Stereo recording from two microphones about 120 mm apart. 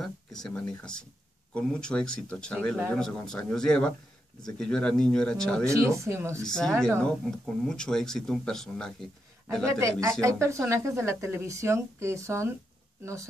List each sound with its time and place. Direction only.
0.0 s speech: 5° left (ahead or behind)
5.7 s a woman's voice: 25° right (ahead or behind)
6.4 s speech: 5° left (ahead or behind)
9.7 s a woman's voice: 25° right (ahead or behind)